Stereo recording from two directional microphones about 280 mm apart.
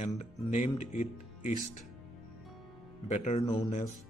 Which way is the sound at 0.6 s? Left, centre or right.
Left.